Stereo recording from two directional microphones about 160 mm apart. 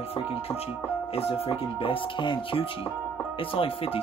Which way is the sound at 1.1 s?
40° left (ahead or behind).